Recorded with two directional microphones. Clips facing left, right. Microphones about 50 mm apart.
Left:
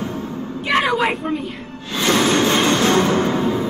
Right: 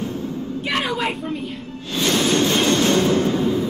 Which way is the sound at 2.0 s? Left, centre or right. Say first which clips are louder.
Left 3 dB; left.